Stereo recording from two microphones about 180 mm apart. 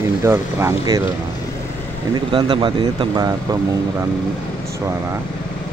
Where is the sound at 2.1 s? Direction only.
30° right (ahead or behind).